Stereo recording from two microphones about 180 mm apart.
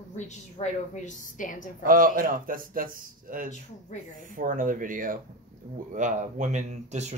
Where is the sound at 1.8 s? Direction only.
50° right (ahead or behind).